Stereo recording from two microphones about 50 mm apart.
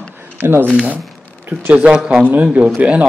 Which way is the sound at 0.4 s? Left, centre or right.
Right.